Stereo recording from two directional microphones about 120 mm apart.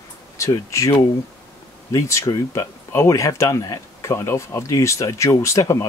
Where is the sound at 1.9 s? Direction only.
25° left (ahead or behind).